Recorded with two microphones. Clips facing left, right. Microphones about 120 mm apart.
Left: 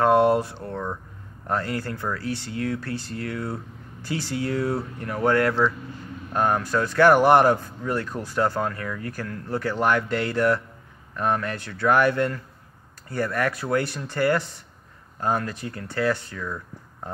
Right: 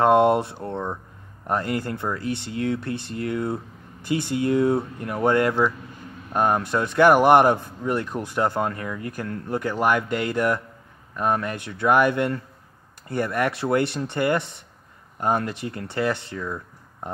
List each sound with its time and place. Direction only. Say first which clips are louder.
0.0 s speech: right 1 dB; 20° right (ahead or behind)